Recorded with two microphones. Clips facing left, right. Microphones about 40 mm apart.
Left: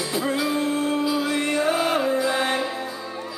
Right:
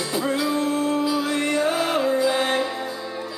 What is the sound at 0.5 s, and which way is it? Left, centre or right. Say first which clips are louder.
Music: right 1 dB; centre.